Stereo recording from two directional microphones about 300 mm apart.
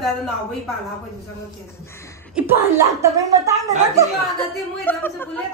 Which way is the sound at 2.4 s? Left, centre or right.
Centre.